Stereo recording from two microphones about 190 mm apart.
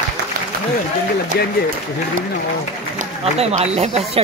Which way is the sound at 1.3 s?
60° left (ahead or behind).